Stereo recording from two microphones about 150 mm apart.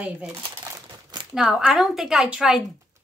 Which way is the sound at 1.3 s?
5° right (ahead or behind).